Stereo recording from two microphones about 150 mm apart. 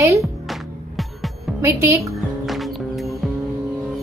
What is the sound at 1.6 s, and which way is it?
Speech, 20° right (ahead or behind).